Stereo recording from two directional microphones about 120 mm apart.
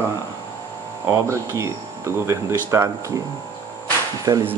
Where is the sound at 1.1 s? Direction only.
25° right (ahead or behind).